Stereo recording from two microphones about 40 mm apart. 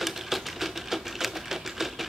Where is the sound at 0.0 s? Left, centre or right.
Centre.